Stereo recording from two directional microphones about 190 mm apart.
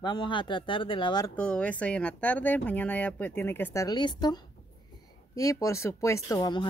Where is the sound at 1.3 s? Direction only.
5° left (ahead or behind).